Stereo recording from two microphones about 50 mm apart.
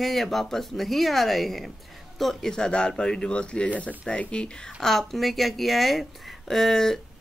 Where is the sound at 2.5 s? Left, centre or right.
Centre.